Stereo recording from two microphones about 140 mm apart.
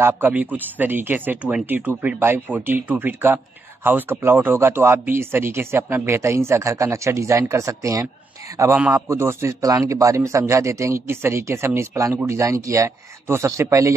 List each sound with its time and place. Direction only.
0.0 s a man's voice: 10° right (ahead or behind)